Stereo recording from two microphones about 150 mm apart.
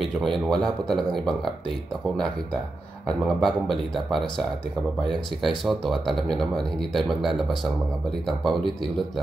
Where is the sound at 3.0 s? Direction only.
Centre (ahead or behind).